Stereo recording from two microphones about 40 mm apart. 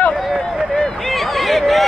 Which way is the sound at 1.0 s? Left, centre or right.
Centre.